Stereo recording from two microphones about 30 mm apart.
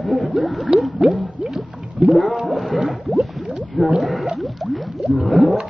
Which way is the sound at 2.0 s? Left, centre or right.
Right.